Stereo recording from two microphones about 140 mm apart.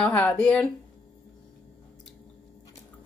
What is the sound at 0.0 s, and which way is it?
Speech, 10° left (ahead or behind).